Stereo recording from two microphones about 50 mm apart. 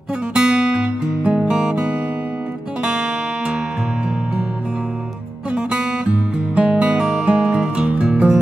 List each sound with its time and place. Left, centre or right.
0.3 s music: centre
5.5 s music: right